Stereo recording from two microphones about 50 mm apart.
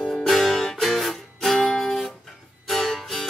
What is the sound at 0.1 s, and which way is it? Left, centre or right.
Music, centre.